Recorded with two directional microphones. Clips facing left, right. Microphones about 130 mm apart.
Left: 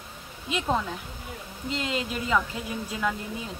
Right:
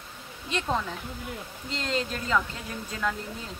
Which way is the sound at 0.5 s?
5° left (ahead or behind).